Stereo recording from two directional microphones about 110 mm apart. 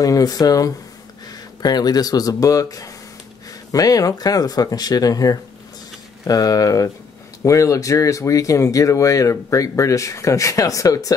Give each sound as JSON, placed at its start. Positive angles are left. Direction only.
{"t": 0.0, "sound": "speech", "side_deg": 35}